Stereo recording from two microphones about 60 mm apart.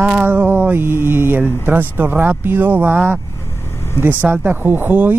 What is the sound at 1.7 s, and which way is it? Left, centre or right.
Speech, right.